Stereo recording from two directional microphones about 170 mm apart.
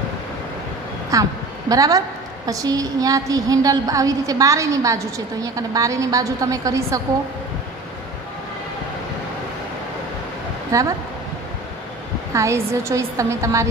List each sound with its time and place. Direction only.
1.1 s a woman's voice: 20° right (ahead or behind)
10.7 s a woman's voice: 20° right (ahead or behind)
12.4 s a woman's voice: 15° right (ahead or behind)